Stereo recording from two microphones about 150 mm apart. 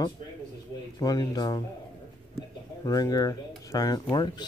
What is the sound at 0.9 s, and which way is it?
Speech, 25° left (ahead or behind).